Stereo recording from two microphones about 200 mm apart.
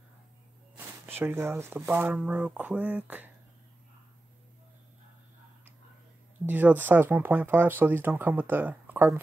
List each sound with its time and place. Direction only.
0.7 s speech: 10° right (ahead or behind)
6.4 s speech: 10° right (ahead or behind)